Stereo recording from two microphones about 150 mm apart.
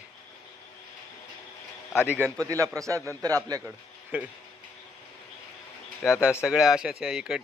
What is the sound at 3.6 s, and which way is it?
Speech, 10° right (ahead or behind).